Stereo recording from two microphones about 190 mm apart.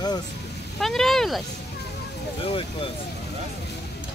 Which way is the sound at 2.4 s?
30° left (ahead or behind).